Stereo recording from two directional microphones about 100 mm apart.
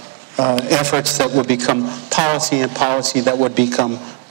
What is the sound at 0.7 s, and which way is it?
A man's voice, 25° right (ahead or behind).